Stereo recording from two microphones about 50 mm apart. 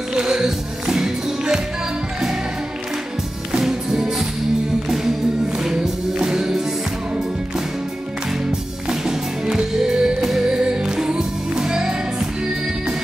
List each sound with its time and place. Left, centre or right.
0.1 s music: centre
3.6 s music: centre
8.8 s music: centre